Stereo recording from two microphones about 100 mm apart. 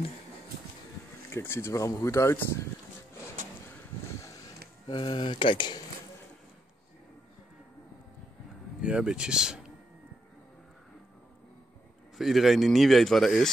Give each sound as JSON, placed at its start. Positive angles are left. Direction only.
{"t": 1.3, "sound": "speech", "side_deg": 25}
{"t": 4.8, "sound": "speech", "side_deg": 50}
{"t": 8.8, "sound": "speech", "side_deg": -10}
{"t": 12.2, "sound": "speech", "side_deg": 0}